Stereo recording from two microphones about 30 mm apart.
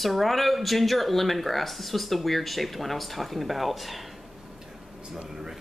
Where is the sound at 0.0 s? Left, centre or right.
Centre.